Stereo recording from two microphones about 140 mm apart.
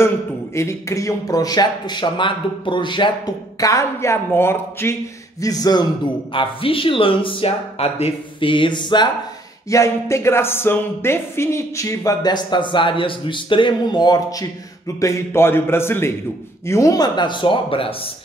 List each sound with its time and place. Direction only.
0.6 s speech: 20° left (ahead or behind)
3.5 s speech: 25° left (ahead or behind)
6.3 s speech: 40° left (ahead or behind)
9.7 s a man's voice: 20° left (ahead or behind); by 17.9 s 40° left (ahead or behind)